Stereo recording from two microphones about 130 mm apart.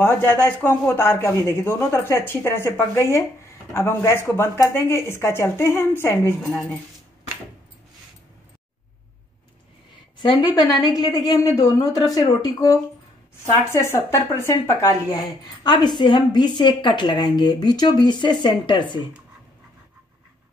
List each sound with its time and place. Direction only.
0.0 s speech: 15° left (ahead or behind)
10.4 s speech: 30° left (ahead or behind)